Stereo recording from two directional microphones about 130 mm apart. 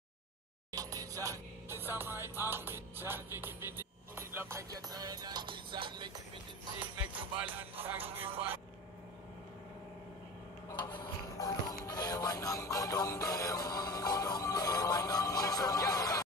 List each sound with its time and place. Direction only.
0.7 s speech: 25° right (ahead or behind)
7.4 s speech: 15° right (ahead or behind)
10.8 s speech: 30° left (ahead or behind)